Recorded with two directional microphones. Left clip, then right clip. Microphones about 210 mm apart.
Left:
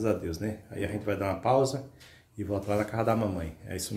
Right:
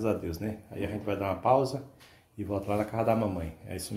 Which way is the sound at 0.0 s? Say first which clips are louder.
Left 1 dB; 5° right (ahead or behind).